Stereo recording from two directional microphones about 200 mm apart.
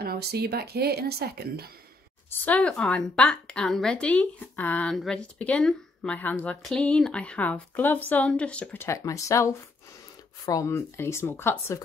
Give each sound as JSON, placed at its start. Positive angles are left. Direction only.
{"t": 0.0, "sound": "a woman's voice", "side_deg": -50}
{"t": 2.4, "sound": "a woman's voice", "side_deg": 5}